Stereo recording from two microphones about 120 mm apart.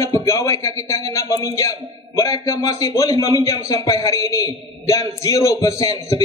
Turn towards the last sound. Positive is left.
turn(degrees=30)  # may be behind; listen again after turning